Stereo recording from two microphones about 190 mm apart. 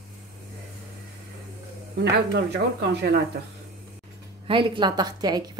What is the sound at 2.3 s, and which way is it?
Speech, 65° right (ahead or behind).